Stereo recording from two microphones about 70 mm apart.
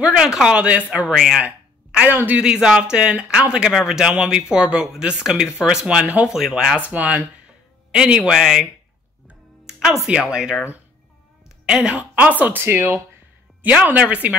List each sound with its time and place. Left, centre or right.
0.0 s speech: centre
1.1 s speech: centre
1.9 s a sound: centre
2.1 s speech: right
2.4 s speech: centre
6.2 s speech: centre
6.8 s speech: right
7.9 s speech: centre
9.7 s music: centre
10.0 s speech: centre
11.6 s speech: centre